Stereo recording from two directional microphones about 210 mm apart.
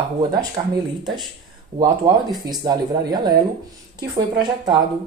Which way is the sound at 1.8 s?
20° right (ahead or behind).